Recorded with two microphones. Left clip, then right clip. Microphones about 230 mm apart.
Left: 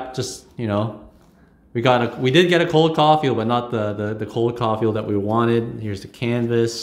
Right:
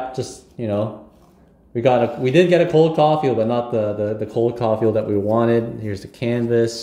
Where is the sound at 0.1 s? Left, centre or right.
Left.